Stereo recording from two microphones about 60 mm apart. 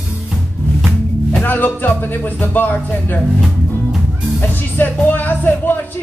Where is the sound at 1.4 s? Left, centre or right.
Left.